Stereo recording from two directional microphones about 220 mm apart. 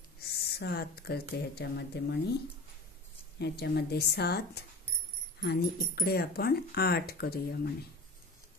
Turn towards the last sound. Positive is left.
turn(degrees=45)  # may be behind; listen again after turning